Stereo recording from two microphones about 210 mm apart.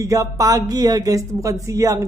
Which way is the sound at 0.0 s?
15° right (ahead or behind).